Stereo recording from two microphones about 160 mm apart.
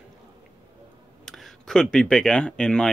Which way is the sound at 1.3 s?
Centre (ahead or behind).